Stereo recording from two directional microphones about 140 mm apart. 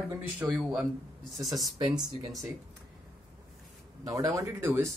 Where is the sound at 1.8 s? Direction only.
30° right (ahead or behind).